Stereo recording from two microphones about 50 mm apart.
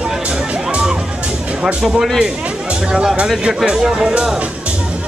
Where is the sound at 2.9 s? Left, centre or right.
Centre.